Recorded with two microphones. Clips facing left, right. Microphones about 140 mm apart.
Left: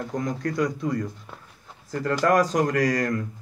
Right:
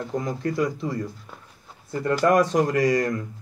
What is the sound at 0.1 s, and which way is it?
Speech, 5° right (ahead or behind).